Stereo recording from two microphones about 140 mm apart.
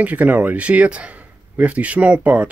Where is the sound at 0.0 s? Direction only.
10° right (ahead or behind).